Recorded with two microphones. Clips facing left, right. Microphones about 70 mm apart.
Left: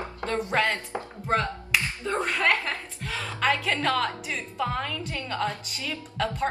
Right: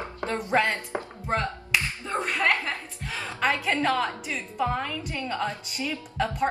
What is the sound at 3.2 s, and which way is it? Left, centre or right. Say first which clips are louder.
A woman's voice: even; centre.